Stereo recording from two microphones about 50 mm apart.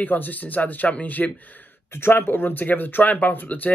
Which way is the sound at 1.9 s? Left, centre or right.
Left.